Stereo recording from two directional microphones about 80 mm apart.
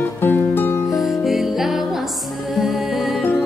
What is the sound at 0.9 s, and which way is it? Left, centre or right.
Music, centre.